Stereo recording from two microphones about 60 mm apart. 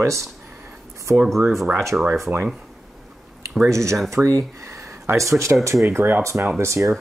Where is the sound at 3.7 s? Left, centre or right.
Right.